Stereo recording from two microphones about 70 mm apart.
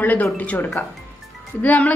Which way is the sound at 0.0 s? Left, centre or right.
Left.